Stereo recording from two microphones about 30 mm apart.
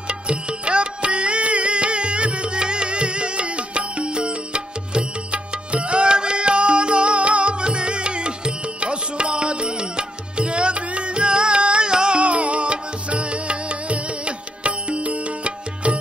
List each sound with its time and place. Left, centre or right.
0.1 s music: right
12.2 s music: right